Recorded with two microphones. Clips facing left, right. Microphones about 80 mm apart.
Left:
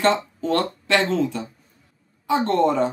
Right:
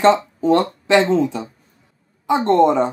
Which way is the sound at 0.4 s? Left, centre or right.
Centre.